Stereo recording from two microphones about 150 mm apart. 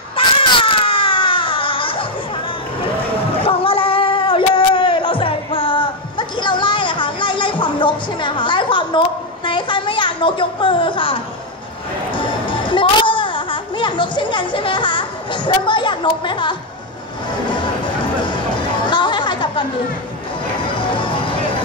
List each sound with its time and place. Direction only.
0.1 s baby cry: 35° left (ahead or behind)
3.3 s a sound: 40° left (ahead or behind)
12.2 s music: 35° left (ahead or behind)
18.2 s chatter: 30° left (ahead or behind)
20.9 s vehicle: 35° left (ahead or behind)